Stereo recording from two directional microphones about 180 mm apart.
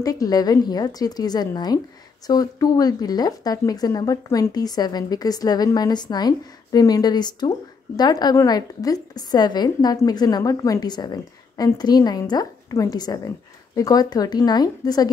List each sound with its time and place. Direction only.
0.0 s speech: 20° left (ahead or behind)